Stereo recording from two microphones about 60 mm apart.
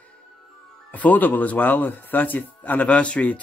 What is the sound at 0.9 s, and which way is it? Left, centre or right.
Speech, left.